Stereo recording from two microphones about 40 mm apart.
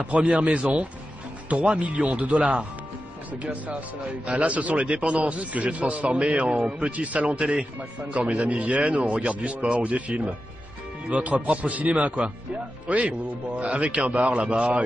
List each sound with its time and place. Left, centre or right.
0.0 s speech: right
1.5 s speech: right
4.4 s speech: right
4.8 s speech: right